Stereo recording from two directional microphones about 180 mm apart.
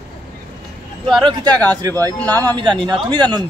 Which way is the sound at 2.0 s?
10° left (ahead or behind).